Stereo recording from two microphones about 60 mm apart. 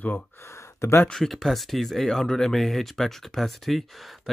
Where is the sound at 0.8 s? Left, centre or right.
Left.